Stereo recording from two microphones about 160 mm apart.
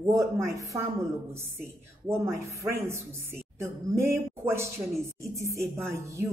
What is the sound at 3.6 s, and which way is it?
A woman's voice, 15° right (ahead or behind).